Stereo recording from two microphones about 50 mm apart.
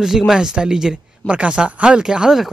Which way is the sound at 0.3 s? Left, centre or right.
Centre.